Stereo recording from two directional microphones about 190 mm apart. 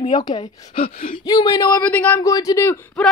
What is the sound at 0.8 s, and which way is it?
Speech, 45° left (ahead or behind).